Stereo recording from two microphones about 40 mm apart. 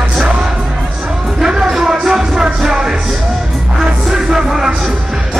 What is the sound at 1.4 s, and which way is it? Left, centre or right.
Music, centre.